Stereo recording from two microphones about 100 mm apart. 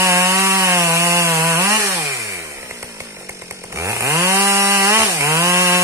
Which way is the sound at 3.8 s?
30° right (ahead or behind).